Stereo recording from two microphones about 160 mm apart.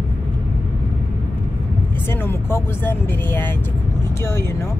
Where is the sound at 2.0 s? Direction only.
15° left (ahead or behind).